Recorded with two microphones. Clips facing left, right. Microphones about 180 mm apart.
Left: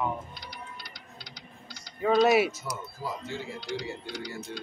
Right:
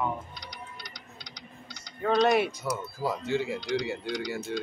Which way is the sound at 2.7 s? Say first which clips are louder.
Right 5 dB; 70° right (ahead or behind).